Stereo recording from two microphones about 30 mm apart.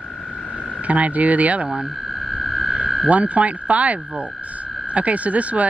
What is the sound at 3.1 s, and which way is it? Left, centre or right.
Speech, right.